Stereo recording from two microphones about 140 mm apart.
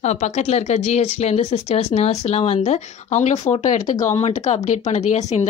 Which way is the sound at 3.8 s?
25° left (ahead or behind).